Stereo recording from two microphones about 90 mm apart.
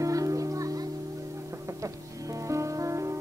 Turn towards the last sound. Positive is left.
turn(degrees=-35)  # may be behind; listen again after turning